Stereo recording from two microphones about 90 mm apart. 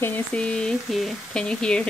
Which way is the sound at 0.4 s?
10° left (ahead or behind).